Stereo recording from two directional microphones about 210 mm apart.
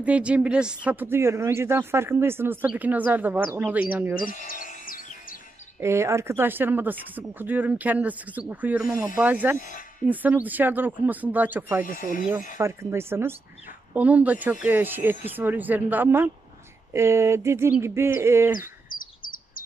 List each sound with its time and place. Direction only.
0.0 s speech: 5° right (ahead or behind)
4.2 s speech: 40° left (ahead or behind)
5.8 s speech: 15° right (ahead or behind)
11.8 s speech: 40° left (ahead or behind)
12.5 s speech: 10° right (ahead or behind)
18.6 s chirp: 40° left (ahead or behind)